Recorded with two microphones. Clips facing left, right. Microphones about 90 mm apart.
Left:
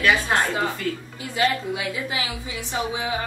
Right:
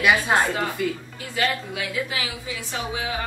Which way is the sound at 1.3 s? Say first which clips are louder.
Left 3 dB; 25° left (ahead or behind).